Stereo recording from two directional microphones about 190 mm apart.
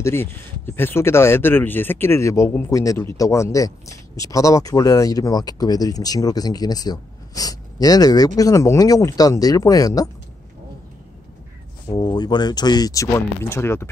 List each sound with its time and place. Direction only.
0.0 s speech: 15° left (ahead or behind)
11.9 s speech: 20° left (ahead or behind)